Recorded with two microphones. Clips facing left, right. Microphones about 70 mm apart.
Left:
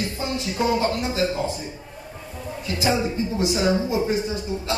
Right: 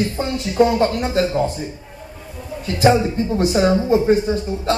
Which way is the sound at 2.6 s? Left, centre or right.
Right.